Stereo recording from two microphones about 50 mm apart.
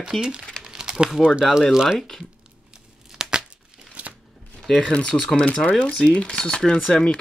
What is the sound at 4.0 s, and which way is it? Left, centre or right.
Shuffling cards, right.